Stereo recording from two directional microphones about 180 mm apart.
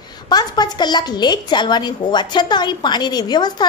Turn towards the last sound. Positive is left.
turn(degrees=25)  # may be behind; listen again after turning